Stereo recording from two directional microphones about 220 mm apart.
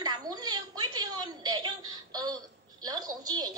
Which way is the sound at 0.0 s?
20° right (ahead or behind).